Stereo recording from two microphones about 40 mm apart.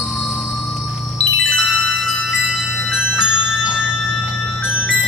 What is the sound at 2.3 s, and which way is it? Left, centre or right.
Music, centre.